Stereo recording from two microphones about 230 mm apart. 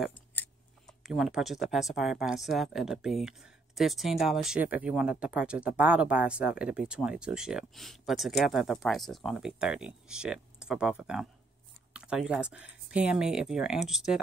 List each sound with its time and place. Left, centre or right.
0.0 s speech: centre